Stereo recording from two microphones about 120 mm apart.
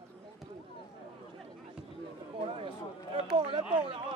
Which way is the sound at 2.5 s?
50° right (ahead or behind).